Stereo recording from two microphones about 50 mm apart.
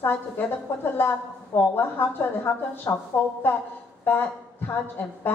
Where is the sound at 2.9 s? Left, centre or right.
Left.